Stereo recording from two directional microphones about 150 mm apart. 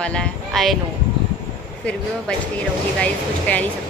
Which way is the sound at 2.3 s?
5° left (ahead or behind).